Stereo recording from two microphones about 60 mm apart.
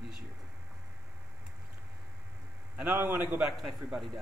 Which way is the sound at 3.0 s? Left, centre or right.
Right.